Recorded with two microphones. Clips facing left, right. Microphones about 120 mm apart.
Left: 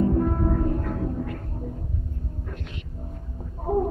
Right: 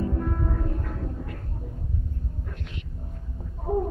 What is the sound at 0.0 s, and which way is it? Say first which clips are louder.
Music: left 6 dB; 30° left (ahead or behind).